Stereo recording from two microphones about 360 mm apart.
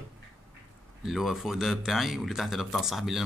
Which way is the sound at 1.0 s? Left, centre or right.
Centre.